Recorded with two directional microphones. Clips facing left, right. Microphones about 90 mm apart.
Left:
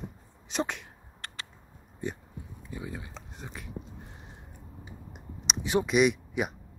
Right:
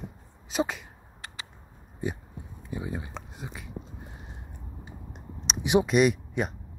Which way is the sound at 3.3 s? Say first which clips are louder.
Right 1 dB; 5° right (ahead or behind).